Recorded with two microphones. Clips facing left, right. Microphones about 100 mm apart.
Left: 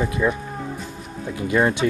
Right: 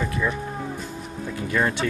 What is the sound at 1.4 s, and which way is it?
Speech, 20° left (ahead or behind).